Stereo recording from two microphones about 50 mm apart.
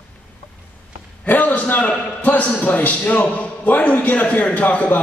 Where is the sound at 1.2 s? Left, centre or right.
Left.